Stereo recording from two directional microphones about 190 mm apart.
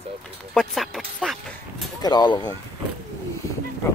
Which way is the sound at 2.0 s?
20° left (ahead or behind).